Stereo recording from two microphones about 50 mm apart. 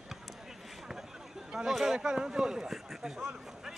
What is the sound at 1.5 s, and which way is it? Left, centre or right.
Speech, centre.